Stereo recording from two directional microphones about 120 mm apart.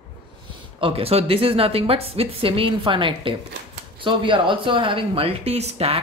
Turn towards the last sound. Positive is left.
turn(degrees=-55)  # may be behind; listen again after turning